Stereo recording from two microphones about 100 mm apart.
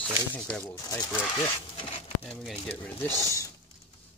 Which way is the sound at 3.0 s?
30° left (ahead or behind).